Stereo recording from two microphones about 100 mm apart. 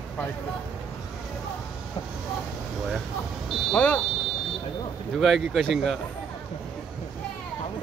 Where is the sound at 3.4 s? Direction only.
Centre (ahead or behind).